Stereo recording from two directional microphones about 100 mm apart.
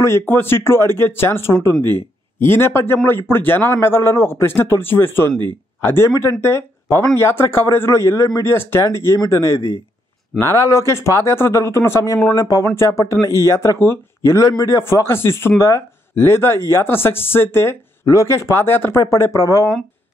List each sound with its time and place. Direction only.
0.3 s a man's voice: 25° left (ahead or behind)